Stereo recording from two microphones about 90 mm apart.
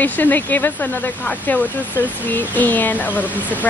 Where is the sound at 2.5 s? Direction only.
20° left (ahead or behind).